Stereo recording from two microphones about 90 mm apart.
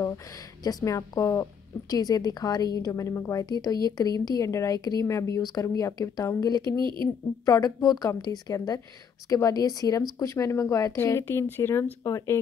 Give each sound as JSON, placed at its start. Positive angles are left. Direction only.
{"t": 0.7, "sound": "a woman's voice", "side_deg": 40}
{"t": 6.8, "sound": "a woman's voice", "side_deg": -60}
{"t": 7.4, "sound": "a woman's voice", "side_deg": 40}